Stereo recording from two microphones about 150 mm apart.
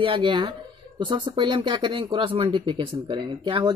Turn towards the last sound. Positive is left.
turn(degrees=-30)  # may be behind; listen again after turning